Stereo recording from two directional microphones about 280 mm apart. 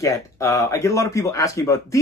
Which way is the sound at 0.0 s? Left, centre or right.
Centre.